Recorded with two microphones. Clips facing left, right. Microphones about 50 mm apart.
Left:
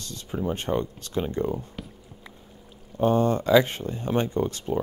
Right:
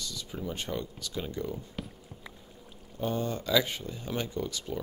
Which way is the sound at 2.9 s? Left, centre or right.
Left.